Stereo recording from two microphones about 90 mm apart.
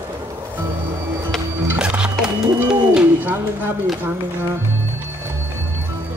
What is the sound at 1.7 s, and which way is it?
Music, 10° right (ahead or behind).